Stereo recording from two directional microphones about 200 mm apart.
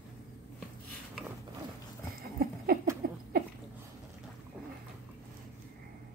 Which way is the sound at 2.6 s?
50° right (ahead or behind).